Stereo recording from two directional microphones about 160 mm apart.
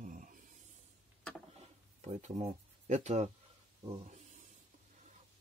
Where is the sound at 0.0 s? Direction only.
55° right (ahead or behind).